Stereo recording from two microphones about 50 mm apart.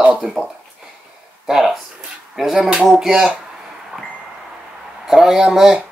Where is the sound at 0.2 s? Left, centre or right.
Centre.